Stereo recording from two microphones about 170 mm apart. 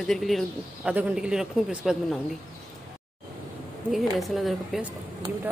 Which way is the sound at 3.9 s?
Centre (ahead or behind).